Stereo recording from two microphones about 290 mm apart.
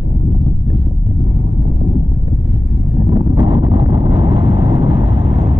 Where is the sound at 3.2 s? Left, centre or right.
Centre.